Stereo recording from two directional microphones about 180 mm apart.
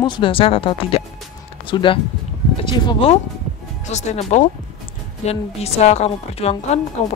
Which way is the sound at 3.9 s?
40° left (ahead or behind).